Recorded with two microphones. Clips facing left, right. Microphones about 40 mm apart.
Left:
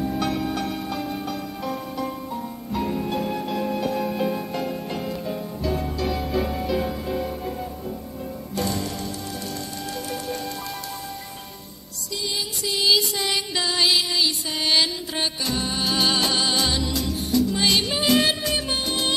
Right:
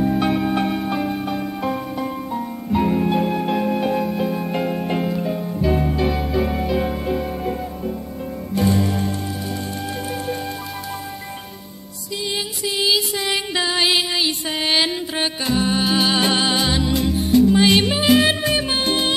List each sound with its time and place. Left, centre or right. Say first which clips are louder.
0.0 s music: right 6 dB; right
4.0 s music: right 2 dB; centre
4.5 s music: right 6 dB; right
12.6 s music: right 1 dB; centre
13.3 s music: right 4 dB; right
18.8 s music: right 6 dB; right